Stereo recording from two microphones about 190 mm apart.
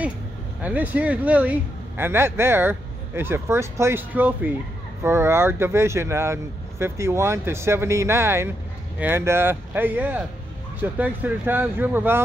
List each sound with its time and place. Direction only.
0.6 s speech: 10° right (ahead or behind)